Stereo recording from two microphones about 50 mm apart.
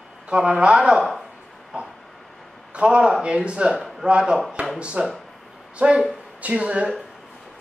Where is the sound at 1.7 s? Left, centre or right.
Right.